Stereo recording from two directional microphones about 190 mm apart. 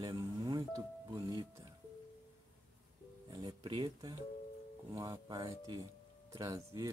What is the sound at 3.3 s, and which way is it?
Speech, 20° right (ahead or behind).